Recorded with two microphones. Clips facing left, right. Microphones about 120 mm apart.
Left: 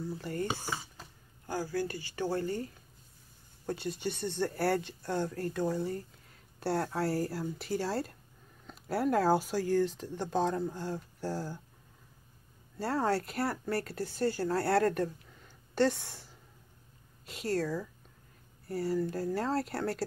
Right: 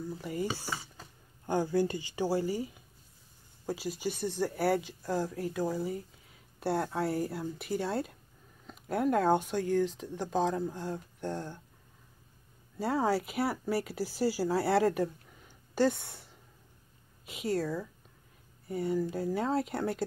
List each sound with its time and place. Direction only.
0.0 s speech: centre (ahead or behind)
1.4 s speech: 20° right (ahead or behind); by 11.6 s 5° left (ahead or behind)
12.7 s speech: centre (ahead or behind)